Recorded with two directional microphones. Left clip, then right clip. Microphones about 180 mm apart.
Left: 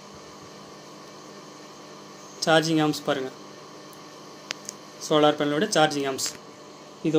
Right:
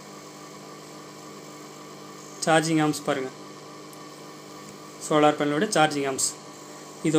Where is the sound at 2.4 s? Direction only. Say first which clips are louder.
Left 1 dB; 5° right (ahead or behind).